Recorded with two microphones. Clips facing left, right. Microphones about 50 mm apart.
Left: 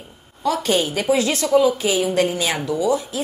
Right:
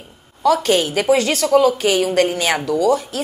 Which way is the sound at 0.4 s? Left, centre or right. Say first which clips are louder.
Right 4 dB; right.